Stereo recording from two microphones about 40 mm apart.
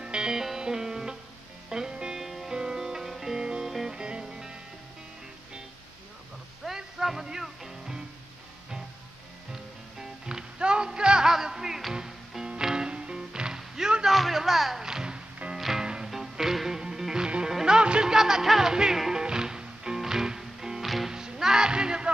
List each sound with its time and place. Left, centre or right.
0.0 s music: centre
2.1 s music: centre
3.9 s music: right
6.8 s music: centre
9.9 s music: centre
13.6 s a sound: centre
14.9 s music: centre
18.1 s music: centre
20.8 s music: centre
21.1 s music: centre